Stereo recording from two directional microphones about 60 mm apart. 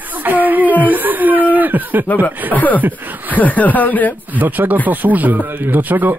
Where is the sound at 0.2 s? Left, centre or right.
Right.